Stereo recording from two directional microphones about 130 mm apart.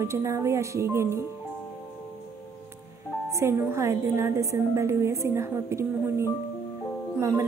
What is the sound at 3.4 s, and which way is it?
Speech, 20° right (ahead or behind).